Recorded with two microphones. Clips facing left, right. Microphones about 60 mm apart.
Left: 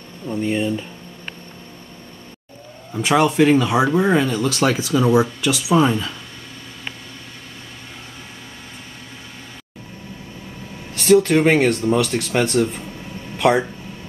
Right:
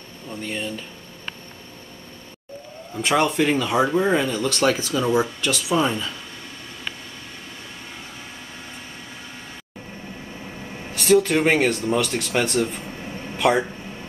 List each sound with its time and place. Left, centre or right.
0.3 s speech: centre
2.9 s speech: centre
10.9 s speech: centre